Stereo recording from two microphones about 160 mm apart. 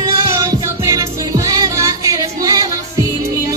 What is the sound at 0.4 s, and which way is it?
Music, 20° right (ahead or behind).